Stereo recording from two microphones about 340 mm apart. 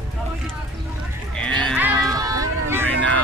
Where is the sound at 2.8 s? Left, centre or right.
Centre.